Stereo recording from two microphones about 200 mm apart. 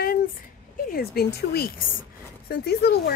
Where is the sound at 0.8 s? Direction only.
50° left (ahead or behind).